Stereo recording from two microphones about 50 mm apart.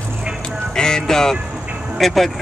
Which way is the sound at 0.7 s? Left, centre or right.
Centre.